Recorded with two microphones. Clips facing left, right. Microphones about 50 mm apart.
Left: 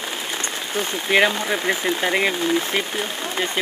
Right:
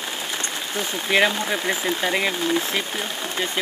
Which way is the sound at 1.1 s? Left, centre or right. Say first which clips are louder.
Left 2 dB; centre.